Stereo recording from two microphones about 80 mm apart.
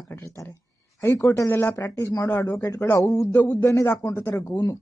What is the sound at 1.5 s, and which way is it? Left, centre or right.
Speech, left.